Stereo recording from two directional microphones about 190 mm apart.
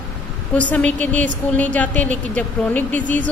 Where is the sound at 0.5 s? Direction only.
5° left (ahead or behind).